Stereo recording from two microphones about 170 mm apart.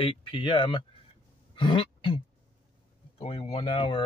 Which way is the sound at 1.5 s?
30° left (ahead or behind).